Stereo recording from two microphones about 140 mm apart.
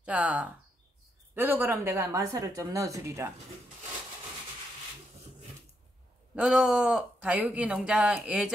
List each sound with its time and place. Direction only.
0.0 s speech: 10° right (ahead or behind)
6.3 s speech: 5° right (ahead or behind)